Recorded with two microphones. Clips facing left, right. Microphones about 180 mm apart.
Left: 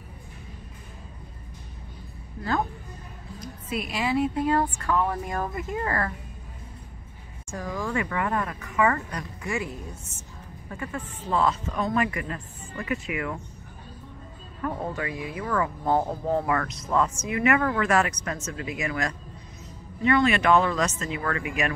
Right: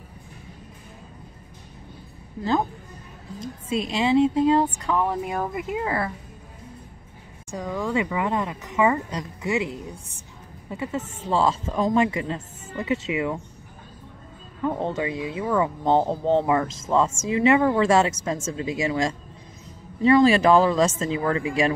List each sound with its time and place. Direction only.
3.3 s a woman's voice: 25° right (ahead or behind); by 6.1 s 10° right (ahead or behind)
7.5 s a woman's voice: 15° right (ahead or behind)
10.7 s speech: 20° right (ahead or behind)
14.6 s speech: 25° right (ahead or behind)